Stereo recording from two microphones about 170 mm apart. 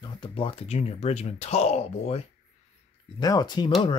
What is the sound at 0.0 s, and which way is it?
Speech, 30° left (ahead or behind).